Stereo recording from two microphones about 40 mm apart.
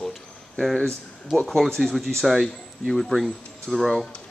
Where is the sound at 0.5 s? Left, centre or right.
Centre.